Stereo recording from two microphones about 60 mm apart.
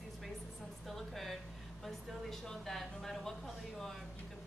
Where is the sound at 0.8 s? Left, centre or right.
Centre.